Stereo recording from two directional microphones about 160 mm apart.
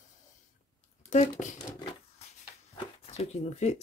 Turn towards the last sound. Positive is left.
turn(degrees=45)  # may be behind; listen again after turning